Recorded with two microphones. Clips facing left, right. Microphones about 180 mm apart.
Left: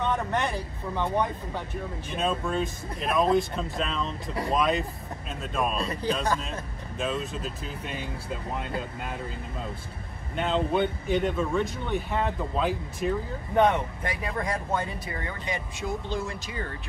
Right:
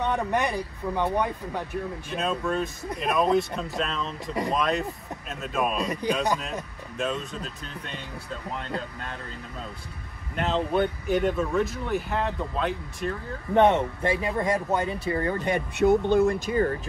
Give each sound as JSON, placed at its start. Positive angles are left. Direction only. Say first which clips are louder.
{"t": 0.0, "sound": "speech", "louder": "right 2 dB", "side_deg": -15}
{"t": 2.0, "sound": "speech", "louder": "left 1 dB", "side_deg": 0}
{"t": 5.8, "sound": "speech", "louder": "right 2 dB", "side_deg": -15}
{"t": 7.0, "sound": "speech", "louder": "even", "side_deg": 0}
{"t": 10.3, "sound": "speech", "louder": "right 1 dB", "side_deg": 0}
{"t": 13.6, "sound": "speech", "louder": "right 3 dB", "side_deg": -25}
{"t": 15.0, "sound": "speech", "louder": "right 9 dB", "side_deg": -40}
{"t": 15.4, "sound": "speech", "louder": "right 12 dB", "side_deg": -60}